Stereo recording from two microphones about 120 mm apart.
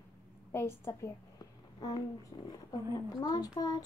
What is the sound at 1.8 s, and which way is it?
A woman's voice, 35° left (ahead or behind).